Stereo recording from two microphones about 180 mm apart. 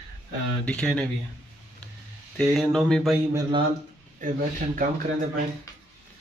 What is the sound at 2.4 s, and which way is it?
Speech, centre (ahead or behind).